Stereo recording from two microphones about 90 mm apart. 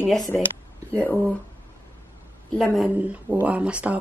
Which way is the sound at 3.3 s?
15° right (ahead or behind).